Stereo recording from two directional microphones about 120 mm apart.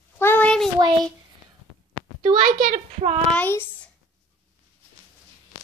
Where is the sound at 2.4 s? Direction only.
85° right; by 3.2 s 65° right (ahead or behind).